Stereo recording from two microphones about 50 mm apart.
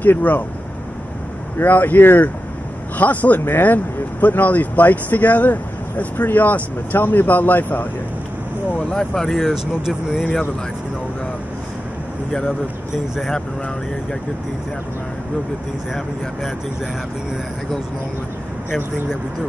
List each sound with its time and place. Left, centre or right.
0.0 s speech: left
1.6 s speech: left
8.9 s speech: centre
9.5 s speech: centre
12.3 s speech: centre